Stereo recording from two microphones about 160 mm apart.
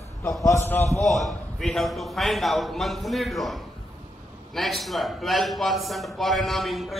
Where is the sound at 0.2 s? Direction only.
20° left (ahead or behind).